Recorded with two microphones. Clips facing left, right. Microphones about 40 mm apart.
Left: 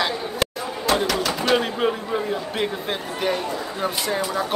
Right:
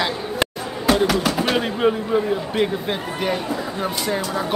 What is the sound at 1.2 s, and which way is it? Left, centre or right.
Speech, centre.